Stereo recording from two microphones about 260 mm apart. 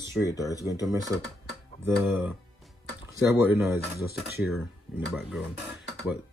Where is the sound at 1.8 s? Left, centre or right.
Centre.